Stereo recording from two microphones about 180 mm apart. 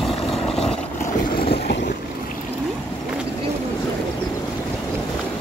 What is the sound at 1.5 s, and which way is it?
Vehicle, 65° left (ahead or behind).